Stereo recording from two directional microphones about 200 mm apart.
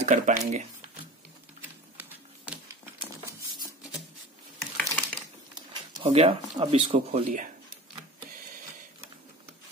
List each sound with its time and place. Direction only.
0.0 s speech: 40° right (ahead or behind)
2.0 s a sound: 10° right (ahead or behind)
4.7 s typing: 5° left (ahead or behind)
5.5 s speech: 25° right (ahead or behind)
7.2 s speech: 40° right (ahead or behind)